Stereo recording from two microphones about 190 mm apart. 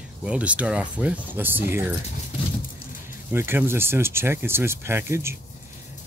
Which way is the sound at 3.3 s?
10° right (ahead or behind).